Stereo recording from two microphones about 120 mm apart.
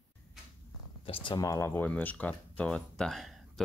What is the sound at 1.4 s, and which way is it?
Speech, 25° left (ahead or behind).